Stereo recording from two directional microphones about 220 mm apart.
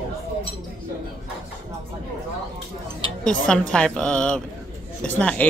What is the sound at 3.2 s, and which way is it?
A woman's voice, 5° left (ahead or behind).